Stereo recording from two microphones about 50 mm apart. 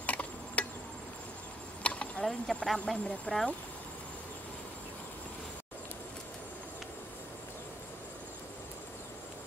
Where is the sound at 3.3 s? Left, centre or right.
Centre.